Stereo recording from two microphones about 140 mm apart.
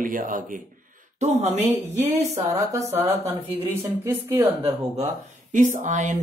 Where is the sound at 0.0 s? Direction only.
75° right (ahead or behind).